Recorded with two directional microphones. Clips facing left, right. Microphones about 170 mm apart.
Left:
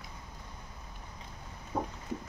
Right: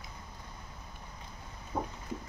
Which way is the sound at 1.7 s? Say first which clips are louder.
Left 1 dB; 10° right (ahead or behind).